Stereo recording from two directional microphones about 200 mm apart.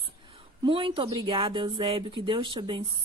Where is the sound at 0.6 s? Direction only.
25° right (ahead or behind).